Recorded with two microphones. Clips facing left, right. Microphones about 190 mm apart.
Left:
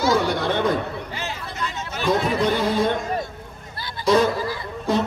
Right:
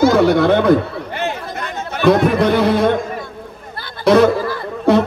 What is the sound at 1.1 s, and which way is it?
Chatter, 60° right (ahead or behind).